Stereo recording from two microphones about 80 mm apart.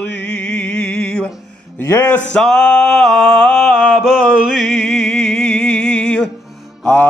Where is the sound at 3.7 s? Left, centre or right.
Centre.